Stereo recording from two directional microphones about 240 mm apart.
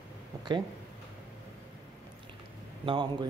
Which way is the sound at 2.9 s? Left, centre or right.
Centre.